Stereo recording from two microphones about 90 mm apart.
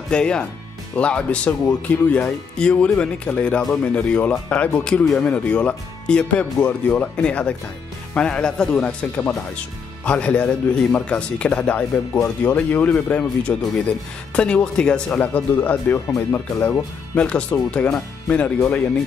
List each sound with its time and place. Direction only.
0.1 s speech: 10° left (ahead or behind)